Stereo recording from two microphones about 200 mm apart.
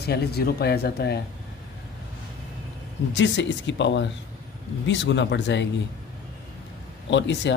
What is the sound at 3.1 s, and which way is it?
Speech, 65° left (ahead or behind).